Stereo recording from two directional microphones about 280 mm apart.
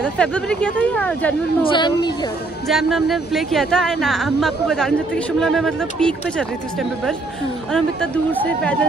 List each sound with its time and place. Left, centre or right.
0.0 s a woman's voice: centre
1.6 s speech: centre
2.7 s a woman's voice: centre